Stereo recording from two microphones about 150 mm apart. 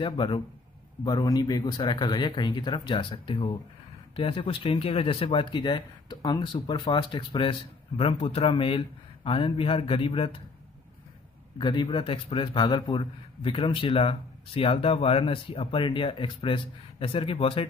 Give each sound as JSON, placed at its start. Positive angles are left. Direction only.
{"t": 0.0, "sound": "a man's voice", "side_deg": 35}
{"t": 11.5, "sound": "a man's voice", "side_deg": 30}